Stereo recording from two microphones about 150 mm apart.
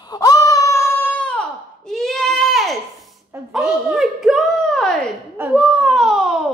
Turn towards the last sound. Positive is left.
turn(degrees=0)  # may be behind; listen again after turning